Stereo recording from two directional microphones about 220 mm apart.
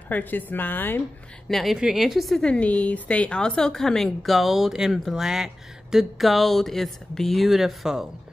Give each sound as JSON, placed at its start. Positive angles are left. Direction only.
{"t": 0.1, "sound": "a woman's voice", "side_deg": 10}